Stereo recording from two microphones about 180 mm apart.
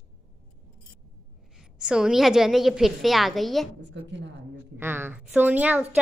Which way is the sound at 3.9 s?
75° right (ahead or behind).